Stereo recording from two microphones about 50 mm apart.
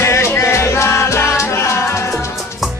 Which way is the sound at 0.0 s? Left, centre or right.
Left.